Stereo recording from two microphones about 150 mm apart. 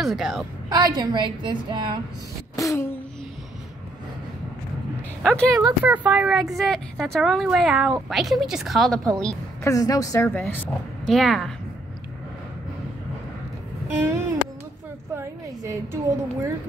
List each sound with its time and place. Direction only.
0.0 s a woman's voice: centre (ahead or behind)
0.7 s a woman's voice: 25° right (ahead or behind)
2.5 s a sound: 20° left (ahead or behind)
5.2 s a woman's voice: 5° left (ahead or behind)
5.9 s a woman's voice: 5° right (ahead or behind)
9.6 s a woman's voice: 20° left (ahead or behind)
11.1 s a woman's voice: centre (ahead or behind)
13.9 s a sound: 15° right (ahead or behind)
15.1 s a woman's voice: 20° right (ahead or behind)